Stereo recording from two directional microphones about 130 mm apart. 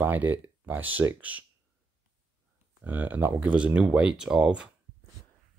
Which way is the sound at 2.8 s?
15° right (ahead or behind).